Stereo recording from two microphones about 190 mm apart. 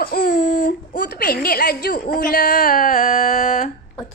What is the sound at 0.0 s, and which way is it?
Speech, 45° left (ahead or behind).